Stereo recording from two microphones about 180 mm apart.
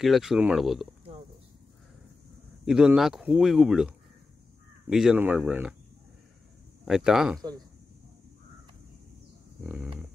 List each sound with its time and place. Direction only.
0.0 s speech: centre (ahead or behind)
2.6 s speech: 5° right (ahead or behind)
6.8 s speech: 5° right (ahead or behind)
7.3 s speech: 20° right (ahead or behind)
9.6 s speech: 10° right (ahead or behind)